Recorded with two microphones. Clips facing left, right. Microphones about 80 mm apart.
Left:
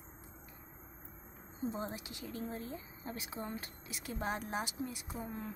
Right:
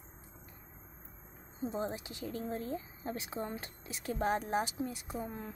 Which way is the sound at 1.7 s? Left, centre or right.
Right.